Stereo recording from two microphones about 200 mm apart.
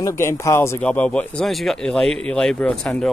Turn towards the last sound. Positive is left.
turn(degrees=5)  # may be behind; listen again after turning